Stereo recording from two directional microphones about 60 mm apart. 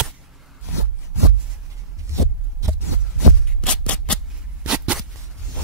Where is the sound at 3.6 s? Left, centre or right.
Centre.